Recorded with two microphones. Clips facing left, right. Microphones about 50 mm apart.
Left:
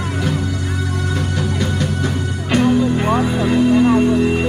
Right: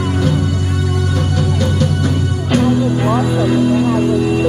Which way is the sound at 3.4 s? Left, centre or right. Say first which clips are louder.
Left 1 dB; left.